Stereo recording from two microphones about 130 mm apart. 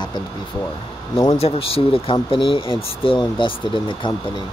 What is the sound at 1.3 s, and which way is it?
Speech, 50° left (ahead or behind).